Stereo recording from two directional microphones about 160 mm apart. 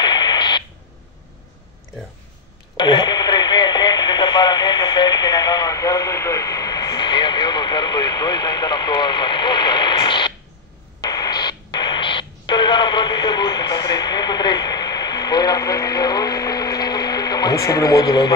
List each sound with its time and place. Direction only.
0.0 s radio: 25° left (ahead or behind)
2.8 s radio: 30° left (ahead or behind)